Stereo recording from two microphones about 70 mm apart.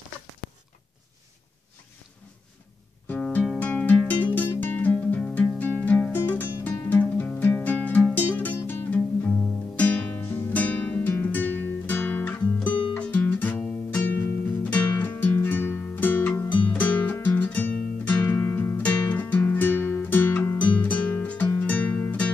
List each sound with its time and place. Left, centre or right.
3.1 s music: left
9.8 s music: left